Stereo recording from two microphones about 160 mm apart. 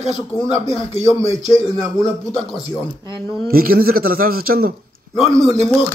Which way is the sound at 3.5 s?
65° right (ahead or behind).